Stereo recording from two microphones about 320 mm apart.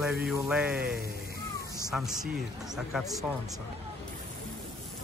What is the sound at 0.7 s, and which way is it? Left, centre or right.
Speech, right.